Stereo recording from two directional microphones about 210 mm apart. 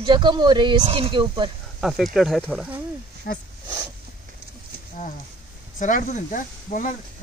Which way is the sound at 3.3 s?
45° left (ahead or behind).